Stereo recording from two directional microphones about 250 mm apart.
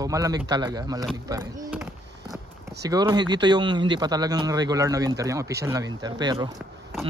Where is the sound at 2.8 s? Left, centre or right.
Centre.